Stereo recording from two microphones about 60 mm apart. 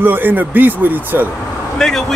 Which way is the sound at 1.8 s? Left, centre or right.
Centre.